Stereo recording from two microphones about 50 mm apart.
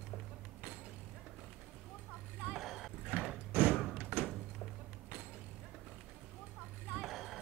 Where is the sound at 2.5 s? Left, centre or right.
Centre.